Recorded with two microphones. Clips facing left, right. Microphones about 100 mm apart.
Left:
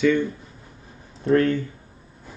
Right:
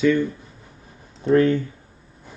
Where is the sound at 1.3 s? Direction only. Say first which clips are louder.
Right 2 dB; 20° right (ahead or behind).